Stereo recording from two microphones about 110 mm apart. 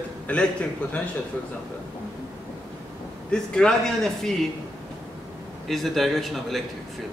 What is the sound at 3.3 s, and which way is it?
Speech, 5° left (ahead or behind).